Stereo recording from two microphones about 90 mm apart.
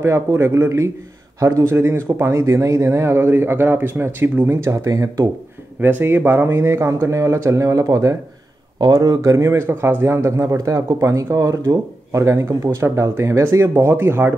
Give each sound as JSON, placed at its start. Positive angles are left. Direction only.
{"t": 0.0, "sound": "speech", "side_deg": -30}
{"t": 5.8, "sound": "speech", "side_deg": -20}